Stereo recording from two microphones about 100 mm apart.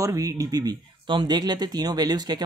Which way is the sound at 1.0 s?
50° right (ahead or behind).